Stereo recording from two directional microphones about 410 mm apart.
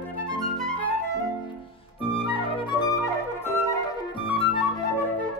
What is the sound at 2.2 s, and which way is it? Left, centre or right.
Flute, centre.